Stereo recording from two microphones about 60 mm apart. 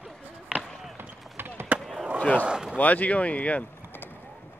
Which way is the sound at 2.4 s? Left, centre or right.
Centre.